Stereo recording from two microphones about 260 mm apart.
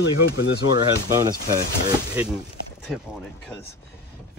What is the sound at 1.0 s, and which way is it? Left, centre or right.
Speech, centre.